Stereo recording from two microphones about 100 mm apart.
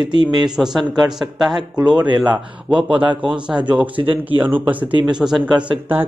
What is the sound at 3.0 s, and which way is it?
Speech, 55° right (ahead or behind).